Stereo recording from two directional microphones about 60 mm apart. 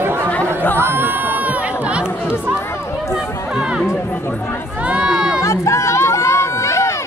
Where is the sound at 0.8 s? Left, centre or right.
Right.